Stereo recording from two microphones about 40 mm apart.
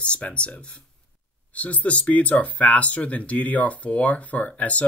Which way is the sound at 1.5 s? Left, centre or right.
Left.